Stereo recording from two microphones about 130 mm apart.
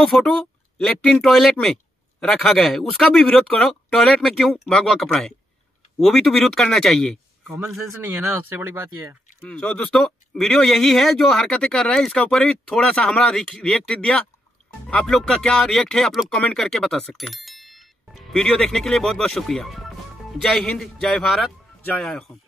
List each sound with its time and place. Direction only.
0.0 s speech: 5° left (ahead or behind)
8.0 s speech: 15° right (ahead or behind)
9.4 s speech: 5° left (ahead or behind)